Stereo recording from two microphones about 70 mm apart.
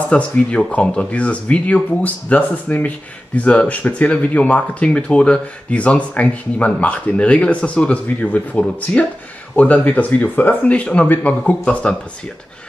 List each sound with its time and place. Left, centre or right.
0.1 s speech: centre